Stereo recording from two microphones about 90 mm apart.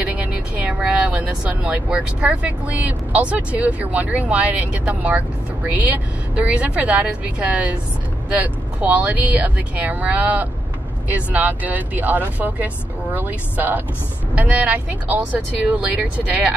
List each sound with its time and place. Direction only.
0.0 s speech: 15° right (ahead or behind)